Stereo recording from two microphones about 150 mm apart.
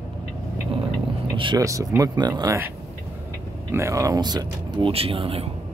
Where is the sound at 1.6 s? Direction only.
20° right (ahead or behind).